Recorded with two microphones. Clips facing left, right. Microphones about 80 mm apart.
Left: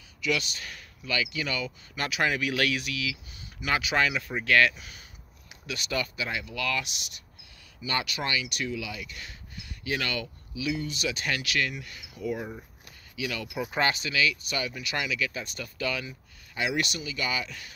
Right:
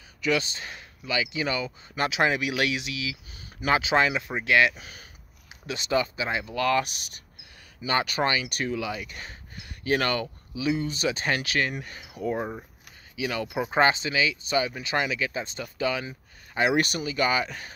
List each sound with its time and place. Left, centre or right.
0.2 s speech: right
4.7 s speech: right
5.7 s speech: right